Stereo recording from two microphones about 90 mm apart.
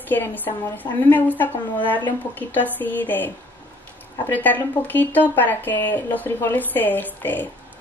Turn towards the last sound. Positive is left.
turn(degrees=20)  # may be behind; listen again after turning